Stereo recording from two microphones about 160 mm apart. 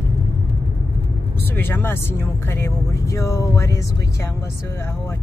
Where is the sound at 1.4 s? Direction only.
15° left (ahead or behind).